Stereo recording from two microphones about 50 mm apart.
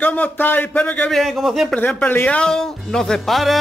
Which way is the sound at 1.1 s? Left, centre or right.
Centre.